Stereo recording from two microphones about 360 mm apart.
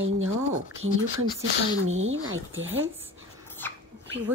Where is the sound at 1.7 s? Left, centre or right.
Right.